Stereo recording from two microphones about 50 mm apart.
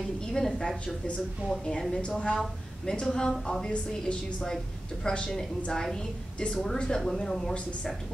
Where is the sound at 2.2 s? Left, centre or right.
Centre.